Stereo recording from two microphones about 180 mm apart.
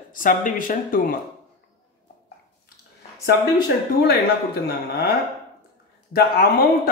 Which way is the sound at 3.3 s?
60° left (ahead or behind).